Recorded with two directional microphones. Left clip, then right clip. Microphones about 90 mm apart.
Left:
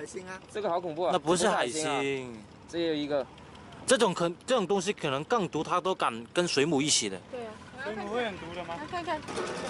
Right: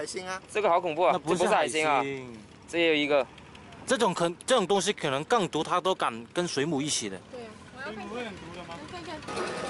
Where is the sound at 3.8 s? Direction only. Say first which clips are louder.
Even; 5° left (ahead or behind).